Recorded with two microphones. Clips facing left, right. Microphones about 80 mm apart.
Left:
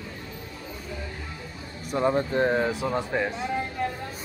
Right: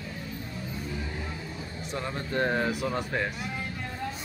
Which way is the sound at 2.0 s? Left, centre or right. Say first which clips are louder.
Left 12 dB; left.